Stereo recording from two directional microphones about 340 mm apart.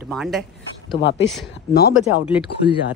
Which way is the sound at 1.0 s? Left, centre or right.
Left.